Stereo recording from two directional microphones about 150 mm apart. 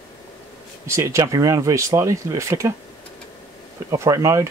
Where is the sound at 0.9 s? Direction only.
20° right (ahead or behind).